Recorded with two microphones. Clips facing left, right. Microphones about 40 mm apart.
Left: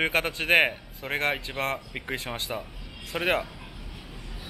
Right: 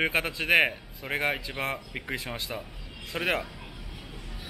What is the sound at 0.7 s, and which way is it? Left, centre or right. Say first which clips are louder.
Speech: left 1 dB; centre.